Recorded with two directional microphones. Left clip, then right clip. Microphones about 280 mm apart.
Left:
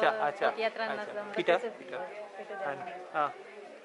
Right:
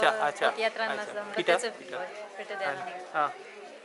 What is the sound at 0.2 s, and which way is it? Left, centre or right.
A woman's voice, centre.